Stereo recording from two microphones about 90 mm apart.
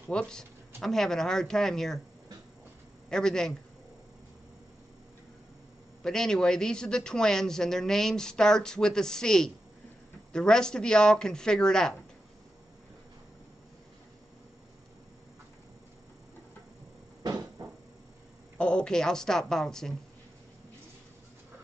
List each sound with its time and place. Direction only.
0.1 s speech: 10° left (ahead or behind)
3.1 s a man's voice: 5° left (ahead or behind)
6.0 s a man's voice: 5° left (ahead or behind)
17.2 s a sound: 40° right (ahead or behind)
18.6 s a woman's voice: 10° left (ahead or behind)